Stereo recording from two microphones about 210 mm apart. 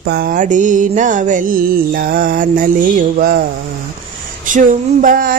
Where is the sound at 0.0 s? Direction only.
50° right (ahead or behind).